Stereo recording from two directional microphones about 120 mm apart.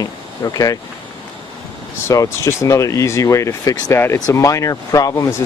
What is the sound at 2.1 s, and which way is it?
Speech, 25° left (ahead or behind).